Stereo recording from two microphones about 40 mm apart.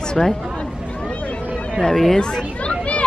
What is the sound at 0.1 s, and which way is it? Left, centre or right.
Speech, centre.